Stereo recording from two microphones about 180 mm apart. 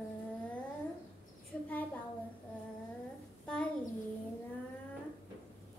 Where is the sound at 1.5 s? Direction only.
5° left (ahead or behind).